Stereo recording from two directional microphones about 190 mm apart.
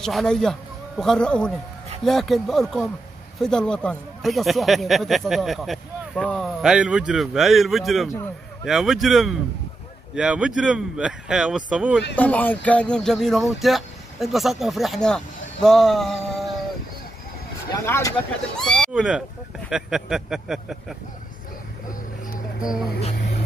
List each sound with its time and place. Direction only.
0.0 s a man's voice: centre (ahead or behind)
12.2 s speech: 10° left (ahead or behind)
17.8 s speech: 15° left (ahead or behind)
18.6 s speech: centre (ahead or behind)
22.6 s speech: 5° right (ahead or behind)
22.9 s music: 35° left (ahead or behind)